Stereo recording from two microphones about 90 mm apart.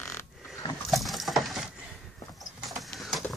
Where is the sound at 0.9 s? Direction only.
Centre (ahead or behind).